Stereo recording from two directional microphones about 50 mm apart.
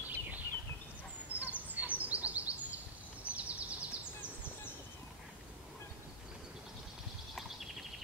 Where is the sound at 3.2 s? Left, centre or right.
Right.